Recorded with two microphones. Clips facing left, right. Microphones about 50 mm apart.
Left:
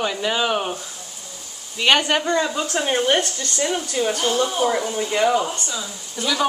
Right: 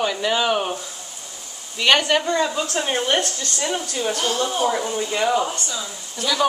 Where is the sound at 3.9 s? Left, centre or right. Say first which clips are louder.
Left 4 dB; centre.